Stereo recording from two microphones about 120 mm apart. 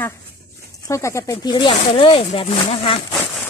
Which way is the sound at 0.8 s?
25° left (ahead or behind).